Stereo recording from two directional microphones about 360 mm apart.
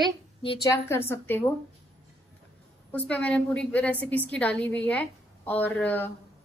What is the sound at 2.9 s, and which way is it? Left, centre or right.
Speech, centre.